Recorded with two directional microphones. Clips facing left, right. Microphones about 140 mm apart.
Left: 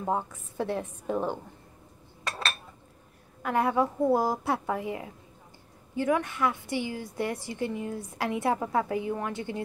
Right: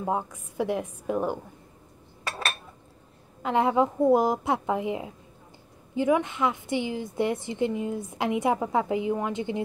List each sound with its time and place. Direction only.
0.0 s a woman's voice: 10° right (ahead or behind)
2.2 s cutlery: 10° right (ahead or behind)
3.4 s a woman's voice: 20° right (ahead or behind)